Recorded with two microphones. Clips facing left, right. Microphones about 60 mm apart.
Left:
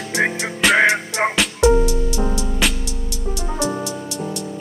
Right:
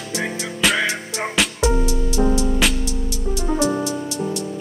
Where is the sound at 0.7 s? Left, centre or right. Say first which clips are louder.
Left 7 dB; left.